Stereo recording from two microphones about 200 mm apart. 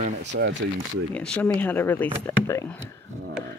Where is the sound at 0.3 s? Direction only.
65° right (ahead or behind).